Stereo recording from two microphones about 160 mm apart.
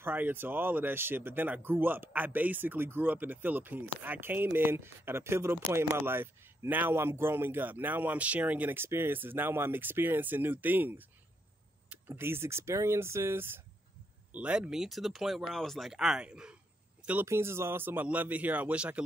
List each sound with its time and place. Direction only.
0.0 s speech: 10° right (ahead or behind)